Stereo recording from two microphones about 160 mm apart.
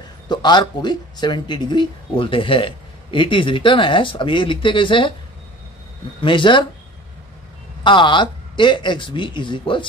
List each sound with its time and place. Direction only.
0.3 s speech: 25° left (ahead or behind)
6.2 s speech: 30° left (ahead or behind)
7.8 s speech: 30° left (ahead or behind)